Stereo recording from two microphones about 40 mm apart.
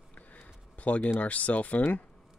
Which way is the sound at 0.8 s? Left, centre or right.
Left.